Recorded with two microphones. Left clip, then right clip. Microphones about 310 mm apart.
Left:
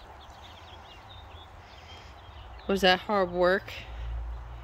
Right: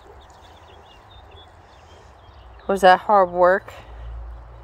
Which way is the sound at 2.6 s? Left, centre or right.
Centre.